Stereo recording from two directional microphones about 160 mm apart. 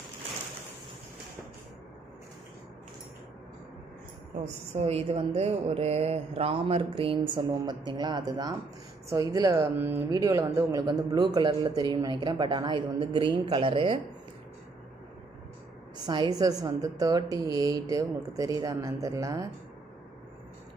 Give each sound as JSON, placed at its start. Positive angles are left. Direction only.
{"t": 4.7, "sound": "speech", "side_deg": -40}
{"t": 16.1, "sound": "speech", "side_deg": -25}